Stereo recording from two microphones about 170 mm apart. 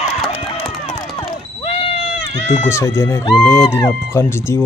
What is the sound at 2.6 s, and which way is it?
Speech, 15° left (ahead or behind).